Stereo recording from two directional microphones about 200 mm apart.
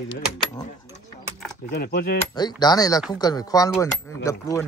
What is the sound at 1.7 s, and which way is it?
Speech, 50° left (ahead or behind).